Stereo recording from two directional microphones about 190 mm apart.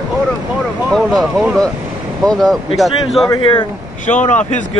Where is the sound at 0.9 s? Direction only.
Centre (ahead or behind).